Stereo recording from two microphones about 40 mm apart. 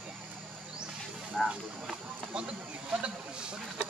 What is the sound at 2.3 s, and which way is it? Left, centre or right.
Speech, right.